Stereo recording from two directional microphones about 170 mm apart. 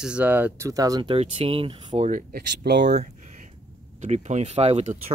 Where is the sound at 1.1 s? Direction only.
35° right (ahead or behind).